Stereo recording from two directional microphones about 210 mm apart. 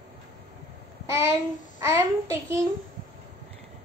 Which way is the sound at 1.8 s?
15° right (ahead or behind).